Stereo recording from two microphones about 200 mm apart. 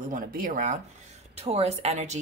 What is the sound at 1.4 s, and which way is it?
Speech, 30° right (ahead or behind).